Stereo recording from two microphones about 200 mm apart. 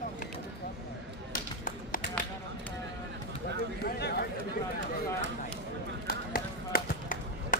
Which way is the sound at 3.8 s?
50° left (ahead or behind).